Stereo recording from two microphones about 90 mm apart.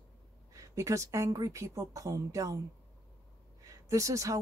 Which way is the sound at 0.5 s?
35° right (ahead or behind).